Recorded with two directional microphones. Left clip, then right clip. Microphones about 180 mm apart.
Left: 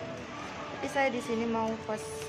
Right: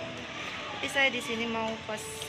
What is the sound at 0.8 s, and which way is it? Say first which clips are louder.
Speech: right 2 dB; 25° left (ahead or behind).